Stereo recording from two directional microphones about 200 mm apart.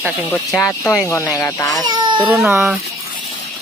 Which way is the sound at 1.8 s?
20° right (ahead or behind).